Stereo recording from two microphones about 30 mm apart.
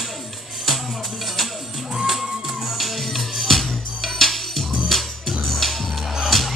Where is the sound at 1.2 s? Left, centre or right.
Centre.